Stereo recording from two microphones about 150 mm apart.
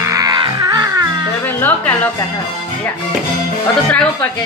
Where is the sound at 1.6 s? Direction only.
10° left (ahead or behind).